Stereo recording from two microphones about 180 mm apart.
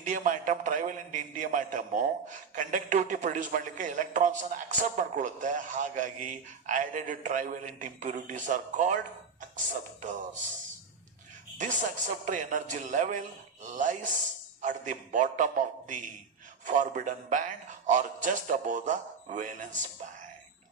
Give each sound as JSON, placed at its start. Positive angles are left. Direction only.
{"t": 0.0, "sound": "a man's voice", "side_deg": -45}
{"t": 11.5, "sound": "a man's voice", "side_deg": -45}